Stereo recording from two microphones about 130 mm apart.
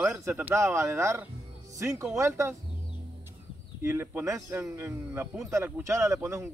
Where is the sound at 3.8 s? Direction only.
20° right (ahead or behind).